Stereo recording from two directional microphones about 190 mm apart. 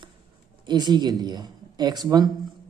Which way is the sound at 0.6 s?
25° right (ahead or behind).